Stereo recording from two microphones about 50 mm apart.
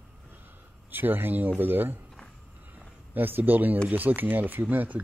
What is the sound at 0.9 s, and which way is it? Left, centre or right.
Speech, right.